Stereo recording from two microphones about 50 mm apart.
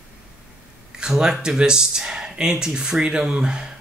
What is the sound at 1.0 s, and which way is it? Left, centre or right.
Speech, centre.